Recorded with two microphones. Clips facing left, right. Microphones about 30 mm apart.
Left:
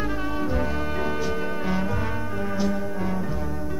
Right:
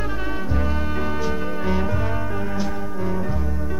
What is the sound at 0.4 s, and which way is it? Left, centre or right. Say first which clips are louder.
Music: left 1 dB; centre.